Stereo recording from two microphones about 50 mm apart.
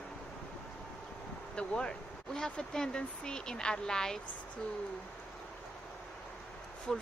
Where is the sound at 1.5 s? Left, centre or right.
Centre.